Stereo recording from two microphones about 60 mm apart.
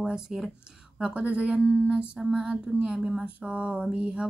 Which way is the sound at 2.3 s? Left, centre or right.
Centre.